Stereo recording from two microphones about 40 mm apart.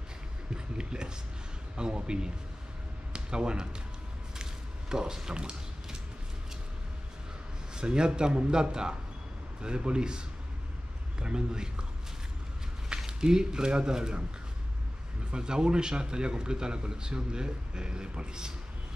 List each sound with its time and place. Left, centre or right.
0.7 s a sound: right
1.8 s a man's voice: right
3.1 s a sound: right
7.7 s a man's voice: right
12.9 s speech: centre
15.3 s a man's voice: right